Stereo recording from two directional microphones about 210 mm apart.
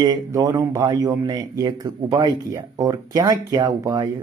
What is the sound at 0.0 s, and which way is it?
A man's voice, 15° right (ahead or behind).